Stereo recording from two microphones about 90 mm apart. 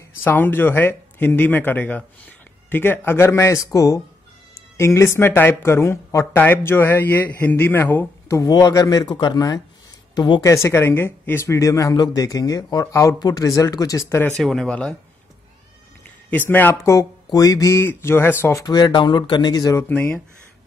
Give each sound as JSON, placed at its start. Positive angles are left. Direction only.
{"t": 0.2, "sound": "speech", "side_deg": 25}
{"t": 8.4, "sound": "speech", "side_deg": 50}
{"t": 10.1, "sound": "speech", "side_deg": 60}
{"t": 10.4, "sound": "speech", "side_deg": 30}
{"t": 14.3, "sound": "speech", "side_deg": 5}
{"t": 16.3, "sound": "speech", "side_deg": 20}
{"t": 16.8, "sound": "speech", "side_deg": 40}
{"t": 17.8, "sound": "speech", "side_deg": 25}
{"t": 18.7, "sound": "speech", "side_deg": 55}
{"t": 19.9, "sound": "speech", "side_deg": 20}